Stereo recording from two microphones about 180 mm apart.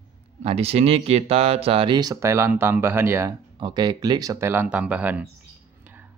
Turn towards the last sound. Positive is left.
turn(degrees=-10)  # may be behind; listen again after turning